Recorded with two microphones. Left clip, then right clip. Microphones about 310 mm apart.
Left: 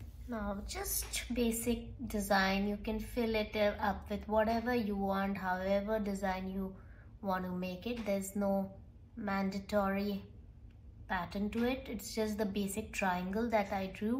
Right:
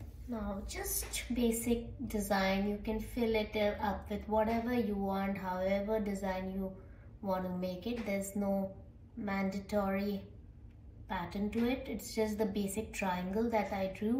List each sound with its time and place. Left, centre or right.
0.4 s a woman's voice: centre
8.3 s a woman's voice: left
9.4 s a woman's voice: centre